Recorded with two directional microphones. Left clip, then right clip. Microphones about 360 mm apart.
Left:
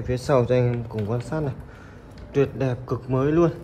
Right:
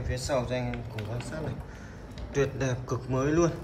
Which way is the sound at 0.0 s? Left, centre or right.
Centre.